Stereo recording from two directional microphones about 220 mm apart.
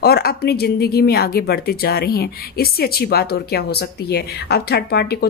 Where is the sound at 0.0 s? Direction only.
45° left (ahead or behind).